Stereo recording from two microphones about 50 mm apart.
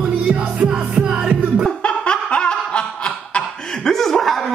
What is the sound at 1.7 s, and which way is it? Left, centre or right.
Snicker, left.